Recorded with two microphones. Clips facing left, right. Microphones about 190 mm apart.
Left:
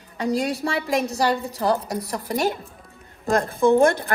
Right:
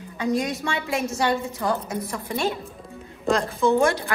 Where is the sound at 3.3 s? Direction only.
55° left (ahead or behind).